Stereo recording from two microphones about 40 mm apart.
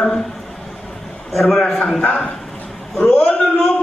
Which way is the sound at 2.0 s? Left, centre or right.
Left.